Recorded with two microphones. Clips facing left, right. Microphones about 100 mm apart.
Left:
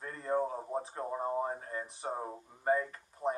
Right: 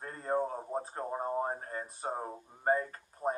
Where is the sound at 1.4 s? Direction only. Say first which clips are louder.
Right 1 dB; 40° right (ahead or behind).